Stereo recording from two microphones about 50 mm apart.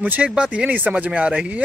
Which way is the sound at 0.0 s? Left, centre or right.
Right.